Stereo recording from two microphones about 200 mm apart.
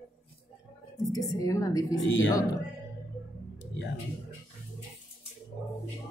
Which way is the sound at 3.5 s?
65° left (ahead or behind).